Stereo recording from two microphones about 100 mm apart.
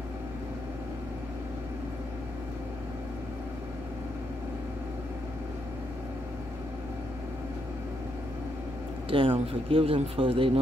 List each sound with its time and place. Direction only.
9.1 s speech: 65° right (ahead or behind)